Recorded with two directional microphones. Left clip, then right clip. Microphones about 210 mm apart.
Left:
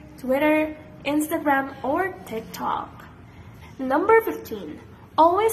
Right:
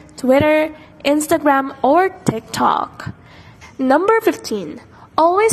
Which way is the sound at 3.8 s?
45° right (ahead or behind).